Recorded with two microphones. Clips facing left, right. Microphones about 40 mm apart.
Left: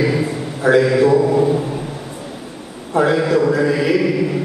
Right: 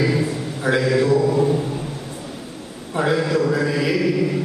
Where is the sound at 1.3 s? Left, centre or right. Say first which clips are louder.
Left 3 dB; centre.